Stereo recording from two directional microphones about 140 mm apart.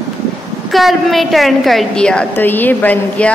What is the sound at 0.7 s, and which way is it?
A woman's voice, centre (ahead or behind).